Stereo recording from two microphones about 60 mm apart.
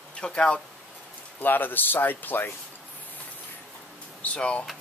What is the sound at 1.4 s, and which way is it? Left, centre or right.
Speech, left.